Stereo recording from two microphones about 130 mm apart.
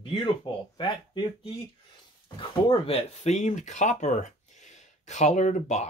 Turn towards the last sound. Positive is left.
turn(degrees=60)  # may be behind; listen again after turning